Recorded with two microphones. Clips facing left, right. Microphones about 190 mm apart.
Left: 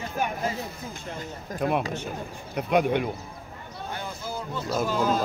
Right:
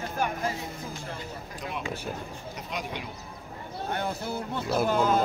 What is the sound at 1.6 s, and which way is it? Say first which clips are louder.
Speech: left 9 dB; 55° left (ahead or behind).